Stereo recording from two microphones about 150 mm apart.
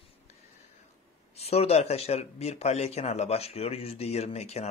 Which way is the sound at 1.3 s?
45° left (ahead or behind).